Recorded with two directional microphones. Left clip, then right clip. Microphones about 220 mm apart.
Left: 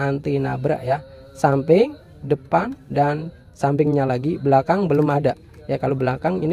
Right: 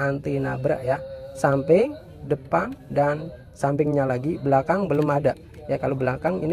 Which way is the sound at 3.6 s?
35° left (ahead or behind).